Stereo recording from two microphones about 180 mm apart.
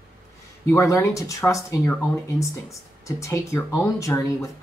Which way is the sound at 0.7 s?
15° left (ahead or behind).